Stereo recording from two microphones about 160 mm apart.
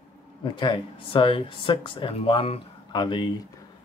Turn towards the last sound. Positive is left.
turn(degrees=30)  # may be behind; listen again after turning